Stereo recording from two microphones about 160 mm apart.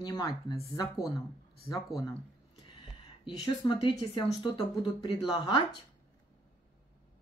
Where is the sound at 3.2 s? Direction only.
30° left (ahead or behind).